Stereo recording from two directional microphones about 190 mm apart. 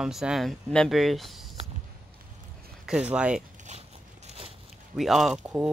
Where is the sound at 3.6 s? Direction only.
35° right (ahead or behind).